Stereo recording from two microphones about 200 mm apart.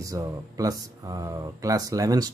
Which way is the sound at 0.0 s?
15° right (ahead or behind).